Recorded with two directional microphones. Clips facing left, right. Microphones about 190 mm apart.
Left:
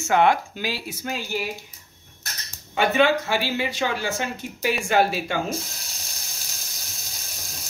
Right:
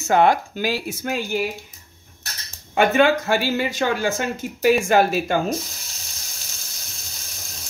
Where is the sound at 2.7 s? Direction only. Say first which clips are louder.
Right 3 dB; 50° right (ahead or behind).